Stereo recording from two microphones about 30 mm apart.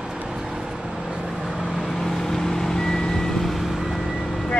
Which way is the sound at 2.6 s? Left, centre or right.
Centre.